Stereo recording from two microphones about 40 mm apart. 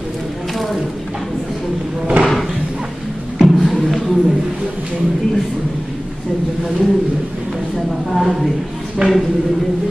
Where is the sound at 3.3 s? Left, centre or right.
Centre.